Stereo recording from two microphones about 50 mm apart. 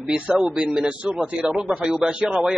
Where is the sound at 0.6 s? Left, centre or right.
Right.